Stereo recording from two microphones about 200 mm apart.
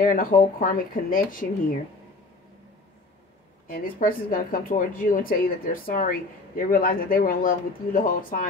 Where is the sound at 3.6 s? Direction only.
45° left (ahead or behind).